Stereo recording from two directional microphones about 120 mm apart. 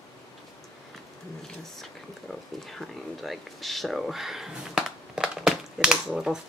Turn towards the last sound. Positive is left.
turn(degrees=-5)  # may be behind; listen again after turning